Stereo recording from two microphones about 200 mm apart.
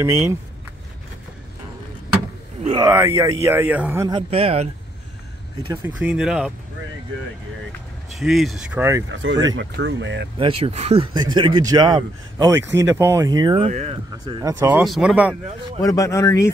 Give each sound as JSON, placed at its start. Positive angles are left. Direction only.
{"t": 0.0, "sound": "speech", "side_deg": -15}
{"t": 2.6, "sound": "speech", "side_deg": -25}
{"t": 2.9, "sound": "speech", "side_deg": -15}
{"t": 4.1, "sound": "a man's voice", "side_deg": -30}
{"t": 5.6, "sound": "a man's voice", "side_deg": -20}
{"t": 5.9, "sound": "speech", "side_deg": -5}
{"t": 8.1, "sound": "speech", "side_deg": 0}
{"t": 9.1, "sound": "speech", "side_deg": -70}
{"t": 10.4, "sound": "a man's voice", "side_deg": -30}
{"t": 13.7, "sound": "speech", "side_deg": -35}
{"t": 14.2, "sound": "speech", "side_deg": -15}
{"t": 14.8, "sound": "speech", "side_deg": -5}
{"t": 15.8, "sound": "speech", "side_deg": 15}